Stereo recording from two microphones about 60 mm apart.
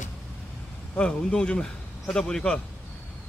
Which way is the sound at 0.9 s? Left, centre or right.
Centre.